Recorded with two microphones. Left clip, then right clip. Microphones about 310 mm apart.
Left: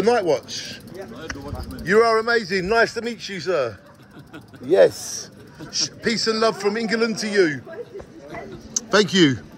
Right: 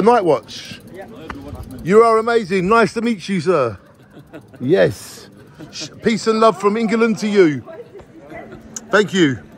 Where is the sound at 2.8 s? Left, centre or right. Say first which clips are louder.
Right 4 dB; centre.